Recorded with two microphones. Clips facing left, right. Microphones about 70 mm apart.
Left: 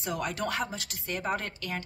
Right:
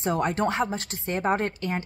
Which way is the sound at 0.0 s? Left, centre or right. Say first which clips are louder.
Right 8 dB; right.